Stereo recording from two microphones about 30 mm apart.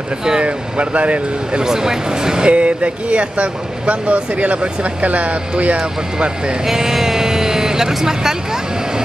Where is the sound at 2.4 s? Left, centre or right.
Right.